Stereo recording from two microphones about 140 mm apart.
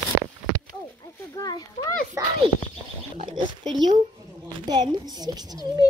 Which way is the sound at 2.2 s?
20° right (ahead or behind).